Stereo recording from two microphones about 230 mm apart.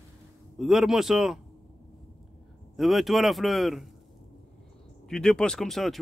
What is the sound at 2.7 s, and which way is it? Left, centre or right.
Speech, centre.